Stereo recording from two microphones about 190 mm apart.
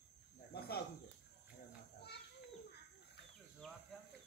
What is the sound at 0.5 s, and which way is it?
Cricket, 55° left (ahead or behind).